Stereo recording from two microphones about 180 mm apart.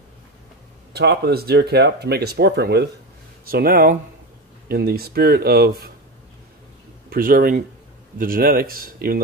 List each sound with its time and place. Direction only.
0.9 s speech: 65° right (ahead or behind)
3.4 s speech: 55° right (ahead or behind)
7.1 s speech: 55° right (ahead or behind)